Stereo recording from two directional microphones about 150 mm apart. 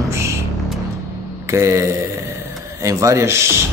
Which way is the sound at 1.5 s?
20° right (ahead or behind).